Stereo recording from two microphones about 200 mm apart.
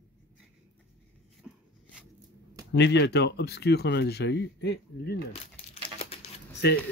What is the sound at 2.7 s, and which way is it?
Speech, 55° left (ahead or behind).